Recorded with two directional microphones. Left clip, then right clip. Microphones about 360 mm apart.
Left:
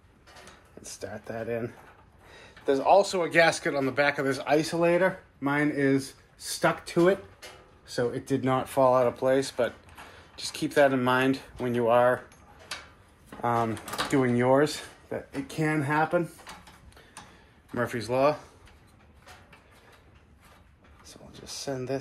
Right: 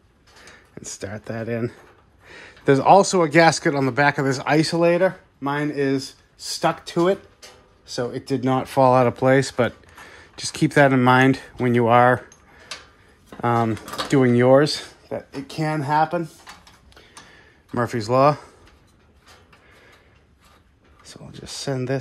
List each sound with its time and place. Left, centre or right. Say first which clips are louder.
0.7 s speech: right 6 dB; right
13.4 s speech: right 6 dB; right
17.7 s speech: right 8 dB; centre
21.0 s a sound: right 7 dB; right